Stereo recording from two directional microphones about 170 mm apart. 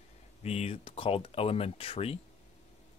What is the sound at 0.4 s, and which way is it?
Speech, 40° left (ahead or behind).